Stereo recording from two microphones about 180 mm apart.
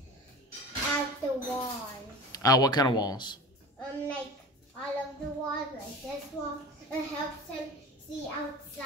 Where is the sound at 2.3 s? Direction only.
20° left (ahead or behind).